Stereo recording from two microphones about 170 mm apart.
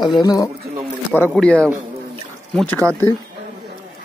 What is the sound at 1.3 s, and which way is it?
Speech, 5° left (ahead or behind).